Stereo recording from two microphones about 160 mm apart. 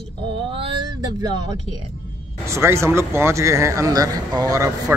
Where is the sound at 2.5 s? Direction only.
15° right (ahead or behind).